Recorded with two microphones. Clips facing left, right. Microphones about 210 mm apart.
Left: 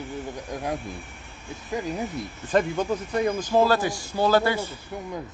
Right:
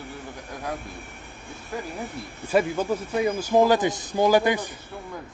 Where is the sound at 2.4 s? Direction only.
5° right (ahead or behind).